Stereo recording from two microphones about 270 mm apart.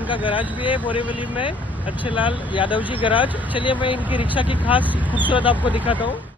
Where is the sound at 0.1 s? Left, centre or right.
Centre.